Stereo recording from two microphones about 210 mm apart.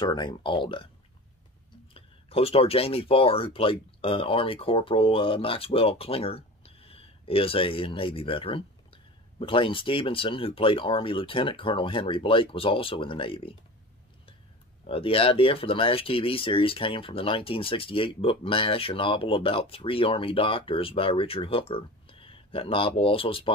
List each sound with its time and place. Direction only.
0.0 s speech: 20° left (ahead or behind)
2.0 s speech: 25° left (ahead or behind)
14.9 s speech: 25° left (ahead or behind)